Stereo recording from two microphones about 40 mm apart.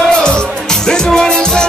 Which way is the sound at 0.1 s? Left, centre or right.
Centre.